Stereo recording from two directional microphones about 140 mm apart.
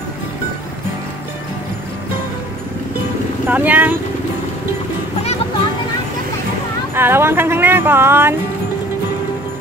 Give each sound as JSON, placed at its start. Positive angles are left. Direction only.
{"t": 3.4, "sound": "speech", "side_deg": -10}
{"t": 6.9, "sound": "speech", "side_deg": -15}